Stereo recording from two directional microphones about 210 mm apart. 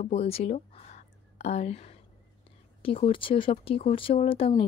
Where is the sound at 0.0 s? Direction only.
30° left (ahead or behind).